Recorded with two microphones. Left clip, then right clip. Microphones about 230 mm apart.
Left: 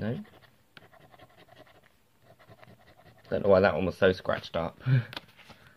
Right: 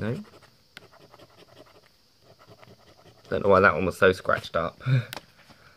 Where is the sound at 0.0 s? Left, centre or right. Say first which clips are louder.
Right 3 dB; centre.